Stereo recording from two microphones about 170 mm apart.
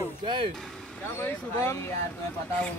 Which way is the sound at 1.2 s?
15° left (ahead or behind).